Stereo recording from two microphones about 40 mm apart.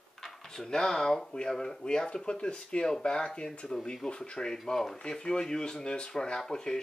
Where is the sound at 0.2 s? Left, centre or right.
Centre.